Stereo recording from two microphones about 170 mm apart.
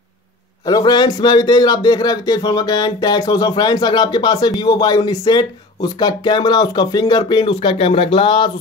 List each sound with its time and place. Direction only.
0.7 s a man's voice: 25° left (ahead or behind)